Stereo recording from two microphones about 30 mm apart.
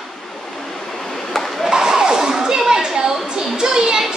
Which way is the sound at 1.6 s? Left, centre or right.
Right.